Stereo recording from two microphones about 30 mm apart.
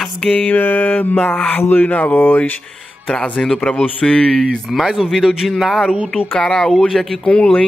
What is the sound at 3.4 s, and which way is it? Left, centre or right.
Speech, centre.